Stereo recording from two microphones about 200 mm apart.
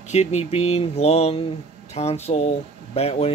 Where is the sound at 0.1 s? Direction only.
35° left (ahead or behind).